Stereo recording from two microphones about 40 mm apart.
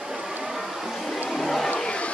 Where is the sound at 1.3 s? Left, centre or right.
Centre.